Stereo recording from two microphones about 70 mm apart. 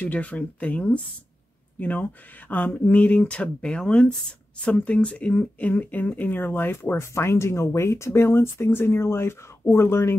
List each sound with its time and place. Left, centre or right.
0.0 s speech: left